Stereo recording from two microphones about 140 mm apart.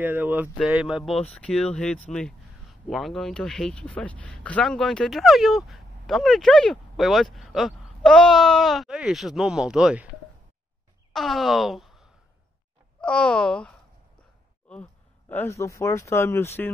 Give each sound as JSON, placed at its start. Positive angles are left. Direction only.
{"t": 0.0, "sound": "a sound", "side_deg": -15}
{"t": 0.6, "sound": "speech", "side_deg": -5}
{"t": 11.1, "sound": "speech", "side_deg": 0}